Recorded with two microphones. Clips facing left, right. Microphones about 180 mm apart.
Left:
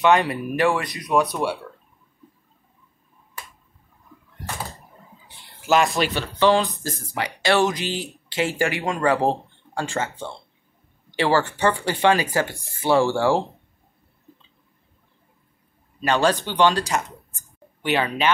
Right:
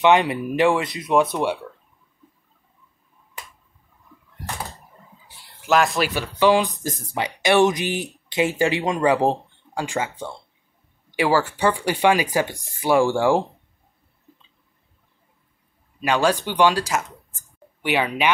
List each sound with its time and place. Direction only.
0.0 s speech: 20° right (ahead or behind)
5.7 s speech: centre (ahead or behind)
16.0 s speech: 10° right (ahead or behind)